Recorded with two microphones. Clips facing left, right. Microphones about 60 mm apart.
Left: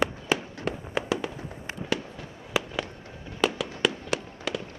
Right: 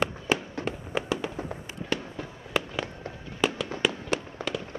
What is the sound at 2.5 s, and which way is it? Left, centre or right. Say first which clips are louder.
Fireworks: even; centre.